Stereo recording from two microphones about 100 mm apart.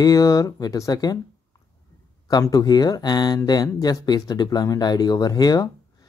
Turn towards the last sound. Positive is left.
turn(degrees=40)  # may be behind; listen again after turning